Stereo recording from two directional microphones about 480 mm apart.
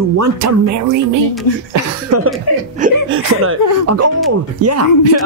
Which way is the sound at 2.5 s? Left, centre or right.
Left.